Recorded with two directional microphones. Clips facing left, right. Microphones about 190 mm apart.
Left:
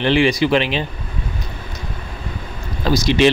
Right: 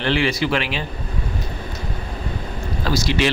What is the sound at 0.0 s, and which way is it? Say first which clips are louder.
Speech: left 5 dB; 15° left (ahead or behind).